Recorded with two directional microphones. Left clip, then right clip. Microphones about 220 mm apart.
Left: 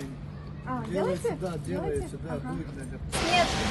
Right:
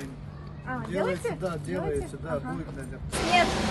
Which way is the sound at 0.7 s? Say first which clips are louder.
Even; centre (ahead or behind).